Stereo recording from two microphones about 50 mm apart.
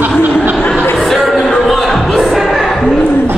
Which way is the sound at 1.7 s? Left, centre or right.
Centre.